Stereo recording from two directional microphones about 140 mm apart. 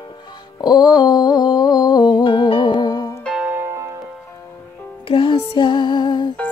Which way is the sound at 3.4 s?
15° right (ahead or behind).